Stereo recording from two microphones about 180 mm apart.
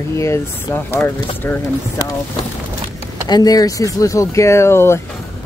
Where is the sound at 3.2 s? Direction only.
20° left (ahead or behind).